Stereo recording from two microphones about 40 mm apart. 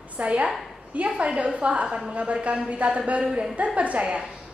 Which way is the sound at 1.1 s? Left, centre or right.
Right.